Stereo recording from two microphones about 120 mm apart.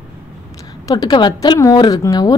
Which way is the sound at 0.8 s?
30° left (ahead or behind).